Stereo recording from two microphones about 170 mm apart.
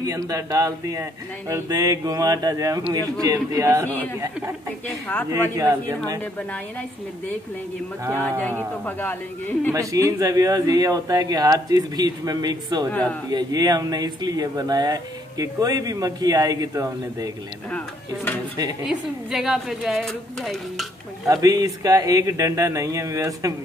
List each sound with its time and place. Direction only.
0.0 s speech: 20° right (ahead or behind)
4.8 s speech: 10° left (ahead or behind)
5.5 s a man's voice: 20° right (ahead or behind)
8.2 s speech: 10° left (ahead or behind)
9.7 s speech: 20° right (ahead or behind)
12.9 s speech: 10° left (ahead or behind)
13.3 s speech: 25° right (ahead or behind)
17.6 s speech: 10° left (ahead or behind)
18.9 s a woman's voice: 5° right (ahead or behind)
21.3 s speech: 20° right (ahead or behind)